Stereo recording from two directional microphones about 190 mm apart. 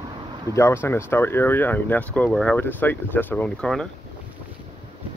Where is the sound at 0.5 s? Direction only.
15° left (ahead or behind).